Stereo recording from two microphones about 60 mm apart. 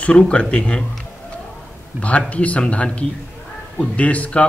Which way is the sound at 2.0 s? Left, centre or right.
Left.